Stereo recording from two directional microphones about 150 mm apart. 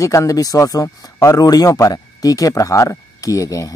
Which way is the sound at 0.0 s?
20° left (ahead or behind).